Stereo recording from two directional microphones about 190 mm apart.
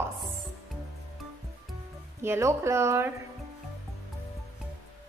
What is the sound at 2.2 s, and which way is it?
Speech, 15° right (ahead or behind).